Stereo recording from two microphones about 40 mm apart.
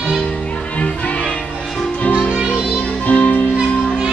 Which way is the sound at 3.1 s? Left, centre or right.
Left.